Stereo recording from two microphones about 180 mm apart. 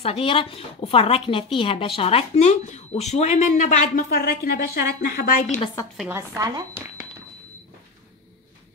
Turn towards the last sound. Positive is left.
turn(degrees=-15)  # may be behind; listen again after turning